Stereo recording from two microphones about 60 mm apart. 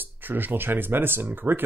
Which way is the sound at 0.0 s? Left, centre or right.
Right.